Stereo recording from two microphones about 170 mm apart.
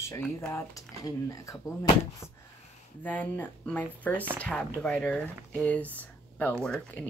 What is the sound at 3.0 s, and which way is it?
Speech, 10° left (ahead or behind).